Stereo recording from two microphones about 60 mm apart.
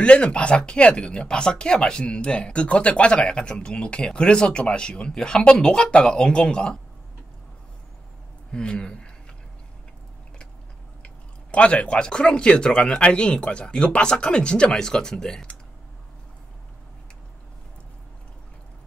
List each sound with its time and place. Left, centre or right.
0.0 s speech: centre
8.5 s speech: centre
11.5 s speech: centre